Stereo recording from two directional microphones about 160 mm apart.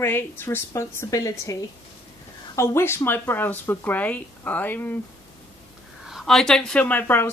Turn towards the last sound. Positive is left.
turn(degrees=10)  # may be behind; listen again after turning